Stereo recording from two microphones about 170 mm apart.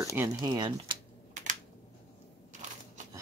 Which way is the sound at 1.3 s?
45° right (ahead or behind).